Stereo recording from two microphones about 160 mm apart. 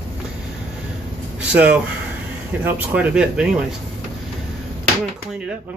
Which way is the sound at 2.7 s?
10° right (ahead or behind).